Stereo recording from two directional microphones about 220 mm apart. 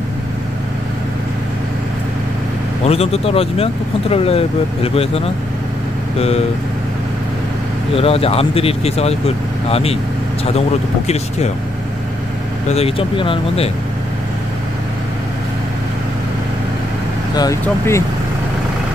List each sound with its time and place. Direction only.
2.9 s speech: 25° left (ahead or behind)
7.9 s speech: 25° left (ahead or behind)
12.6 s speech: 25° left (ahead or behind)
17.4 s speech: 15° left (ahead or behind)